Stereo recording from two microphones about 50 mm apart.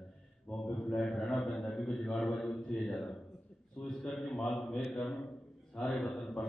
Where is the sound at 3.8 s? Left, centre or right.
Centre.